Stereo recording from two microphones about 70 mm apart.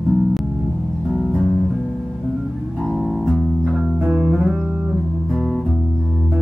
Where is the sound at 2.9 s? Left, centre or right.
Centre.